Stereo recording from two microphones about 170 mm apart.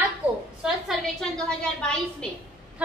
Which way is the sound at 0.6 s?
Centre (ahead or behind).